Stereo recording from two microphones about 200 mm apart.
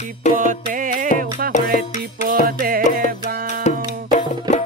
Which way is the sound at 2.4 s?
45° right (ahead or behind).